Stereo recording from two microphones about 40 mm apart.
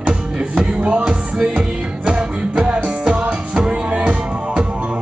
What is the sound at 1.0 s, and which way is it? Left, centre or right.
Music, centre.